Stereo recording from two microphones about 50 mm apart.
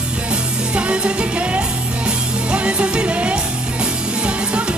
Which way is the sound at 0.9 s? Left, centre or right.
Right.